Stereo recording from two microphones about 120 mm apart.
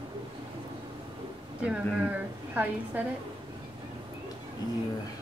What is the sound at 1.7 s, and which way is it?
A woman's voice, 15° right (ahead or behind).